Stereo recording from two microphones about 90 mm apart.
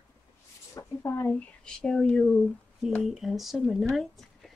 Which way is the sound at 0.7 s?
25° left (ahead or behind).